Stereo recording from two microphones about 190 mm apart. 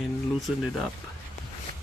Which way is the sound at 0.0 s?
Centre (ahead or behind).